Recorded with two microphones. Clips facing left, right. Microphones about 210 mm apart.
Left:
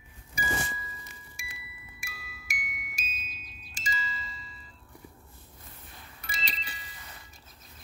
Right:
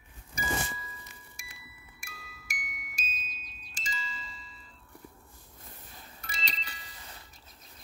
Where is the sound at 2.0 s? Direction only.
5° left (ahead or behind).